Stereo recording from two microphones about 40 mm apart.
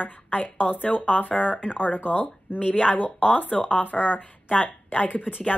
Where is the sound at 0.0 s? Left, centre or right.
Left.